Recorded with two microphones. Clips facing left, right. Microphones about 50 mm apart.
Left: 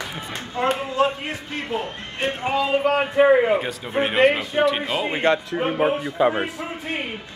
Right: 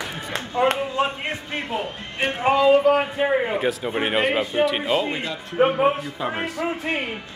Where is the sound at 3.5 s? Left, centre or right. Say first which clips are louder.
Even; centre.